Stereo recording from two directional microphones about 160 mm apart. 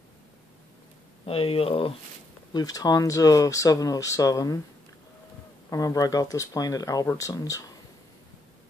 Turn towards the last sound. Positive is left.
turn(degrees=20)  # may be behind; listen again after turning